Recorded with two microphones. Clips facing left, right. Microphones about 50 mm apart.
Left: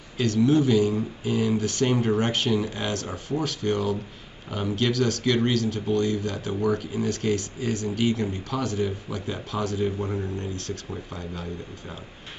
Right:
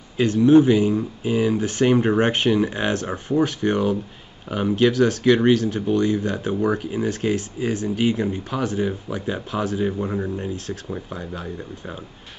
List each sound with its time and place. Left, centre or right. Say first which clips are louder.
0.2 s speech: right 7 dB; right